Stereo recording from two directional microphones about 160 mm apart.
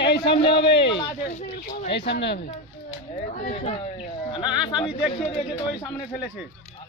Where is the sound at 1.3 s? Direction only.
50° left (ahead or behind).